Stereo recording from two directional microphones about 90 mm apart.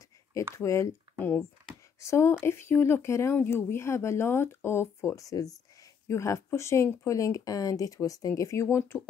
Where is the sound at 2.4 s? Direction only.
30° left (ahead or behind).